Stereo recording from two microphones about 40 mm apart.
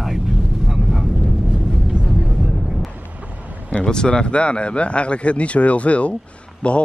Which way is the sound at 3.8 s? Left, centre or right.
Left.